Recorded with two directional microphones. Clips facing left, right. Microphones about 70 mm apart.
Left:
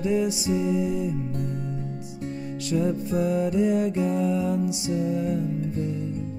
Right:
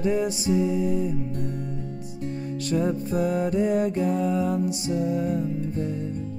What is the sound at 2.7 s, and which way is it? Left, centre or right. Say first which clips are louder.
Music: even; right.